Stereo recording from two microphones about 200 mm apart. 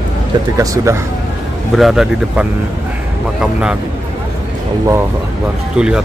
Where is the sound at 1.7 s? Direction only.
Centre (ahead or behind).